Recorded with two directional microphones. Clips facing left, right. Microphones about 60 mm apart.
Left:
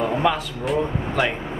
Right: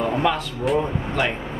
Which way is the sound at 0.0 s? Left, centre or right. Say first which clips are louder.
Even; centre.